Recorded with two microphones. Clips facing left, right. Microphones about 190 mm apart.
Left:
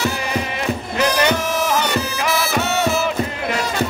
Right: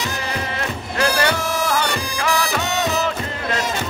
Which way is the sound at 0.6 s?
15° left (ahead or behind).